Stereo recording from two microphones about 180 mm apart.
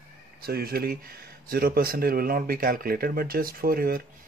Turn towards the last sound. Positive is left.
turn(degrees=-55)  # may be behind; listen again after turning